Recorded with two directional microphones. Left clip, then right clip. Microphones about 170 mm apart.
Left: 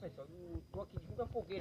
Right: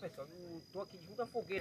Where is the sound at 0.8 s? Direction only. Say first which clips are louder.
Right 1 dB; 10° right (ahead or behind).